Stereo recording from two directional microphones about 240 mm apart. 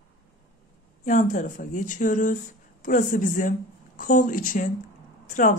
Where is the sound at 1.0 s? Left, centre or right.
Left.